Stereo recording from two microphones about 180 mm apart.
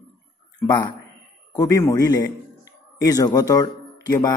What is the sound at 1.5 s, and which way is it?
A man's voice, 20° left (ahead or behind).